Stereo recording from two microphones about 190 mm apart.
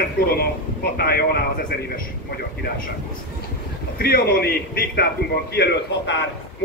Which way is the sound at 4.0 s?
55° left (ahead or behind).